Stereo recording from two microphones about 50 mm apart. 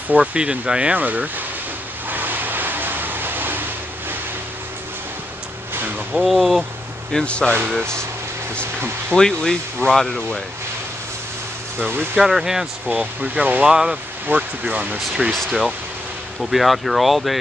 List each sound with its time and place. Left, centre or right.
0.1 s speech: right
0.9 s speech: right
2.0 s vehicle: right
6.1 s speech: centre
7.2 s speech: left
9.1 s speech: centre
12.2 s speech: centre
12.9 s speech: right
13.7 s speech: centre
14.3 s speech: right
15.3 s speech: centre